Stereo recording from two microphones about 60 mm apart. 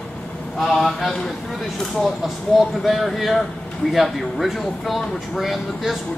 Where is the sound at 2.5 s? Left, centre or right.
Centre.